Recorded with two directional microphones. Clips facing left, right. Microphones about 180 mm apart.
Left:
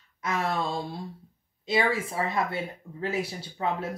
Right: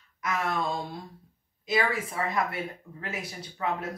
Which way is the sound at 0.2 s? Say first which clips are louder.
Left 1 dB; 30° left (ahead or behind).